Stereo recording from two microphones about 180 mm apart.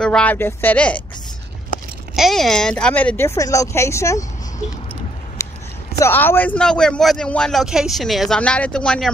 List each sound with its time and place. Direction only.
0.0 s speech: 5° left (ahead or behind)
2.1 s speech: centre (ahead or behind); by 4.3 s 15° left (ahead or behind)
5.4 s a sound: 15° left (ahead or behind)
5.9 s speech: 10° left (ahead or behind)